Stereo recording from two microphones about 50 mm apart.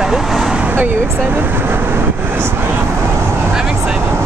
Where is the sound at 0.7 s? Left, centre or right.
Right.